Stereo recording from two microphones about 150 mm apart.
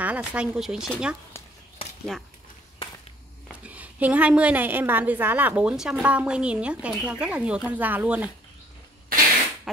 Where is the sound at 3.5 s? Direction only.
10° right (ahead or behind).